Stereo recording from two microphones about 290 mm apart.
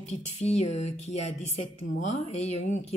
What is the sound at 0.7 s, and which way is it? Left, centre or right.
Speech, left.